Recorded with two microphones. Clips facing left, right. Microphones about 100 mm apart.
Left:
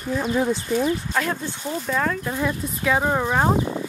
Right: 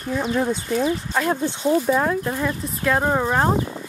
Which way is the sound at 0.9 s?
15° right (ahead or behind).